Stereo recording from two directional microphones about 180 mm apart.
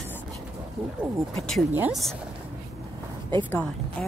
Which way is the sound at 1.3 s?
Centre (ahead or behind).